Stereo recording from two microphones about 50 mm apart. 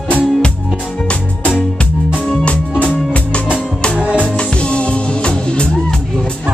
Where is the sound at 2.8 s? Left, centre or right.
Left.